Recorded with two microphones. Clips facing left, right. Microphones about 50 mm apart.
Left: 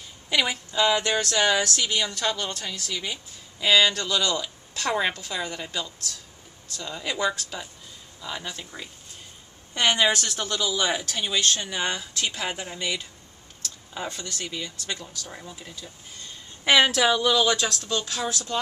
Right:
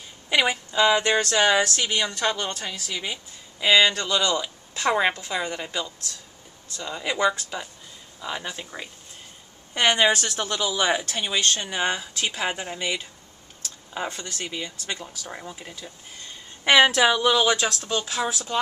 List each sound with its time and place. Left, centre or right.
0.3 s a woman's voice: centre
16.6 s a woman's voice: centre